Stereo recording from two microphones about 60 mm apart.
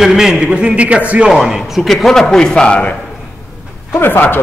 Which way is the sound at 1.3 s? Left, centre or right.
Centre.